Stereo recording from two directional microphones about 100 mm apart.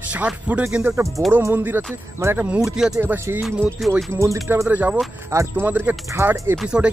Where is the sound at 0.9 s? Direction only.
30° right (ahead or behind).